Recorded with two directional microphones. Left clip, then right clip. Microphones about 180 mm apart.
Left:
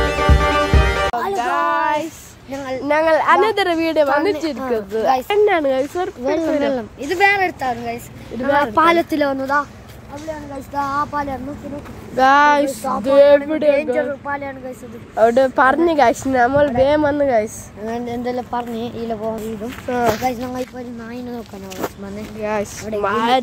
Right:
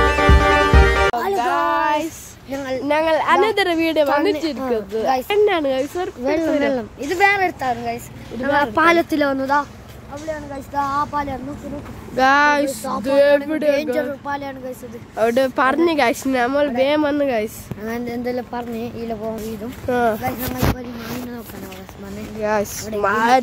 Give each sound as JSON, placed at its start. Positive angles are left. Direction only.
{"t": 0.0, "sound": "music", "side_deg": 0}
{"t": 1.3, "sound": "a sound", "side_deg": 5}
{"t": 2.5, "sound": "a sound", "side_deg": -20}
{"t": 2.8, "sound": "a sound", "side_deg": 20}
{"t": 3.3, "sound": "a woman's voice", "side_deg": -5}
{"t": 5.1, "sound": "speech", "side_deg": -5}
{"t": 6.2, "sound": "a woman's voice", "side_deg": -10}
{"t": 9.4, "sound": "a woman's voice", "side_deg": -20}
{"t": 10.7, "sound": "speech", "side_deg": 30}
{"t": 12.2, "sound": "a woman's voice", "side_deg": 5}
{"t": 18.8, "sound": "a woman's voice", "side_deg": 15}
{"t": 22.4, "sound": "a woman's voice", "side_deg": -10}